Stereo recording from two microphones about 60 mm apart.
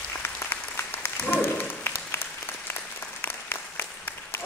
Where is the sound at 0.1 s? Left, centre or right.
Left.